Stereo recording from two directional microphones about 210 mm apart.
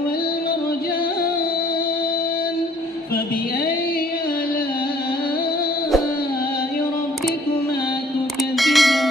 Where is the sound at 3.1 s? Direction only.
45° left (ahead or behind).